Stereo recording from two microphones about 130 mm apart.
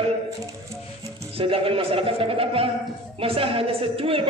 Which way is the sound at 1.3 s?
45° right (ahead or behind).